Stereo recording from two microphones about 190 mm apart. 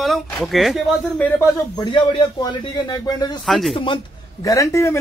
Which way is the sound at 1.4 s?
20° left (ahead or behind).